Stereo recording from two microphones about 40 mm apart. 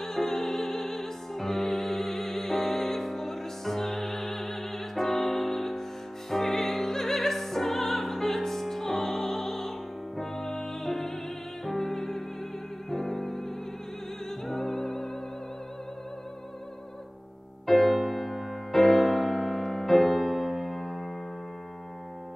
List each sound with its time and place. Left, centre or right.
0.0 s music: centre
14.5 s music: centre
17.6 s music: centre